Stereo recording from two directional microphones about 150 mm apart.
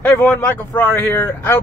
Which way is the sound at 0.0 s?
10° left (ahead or behind).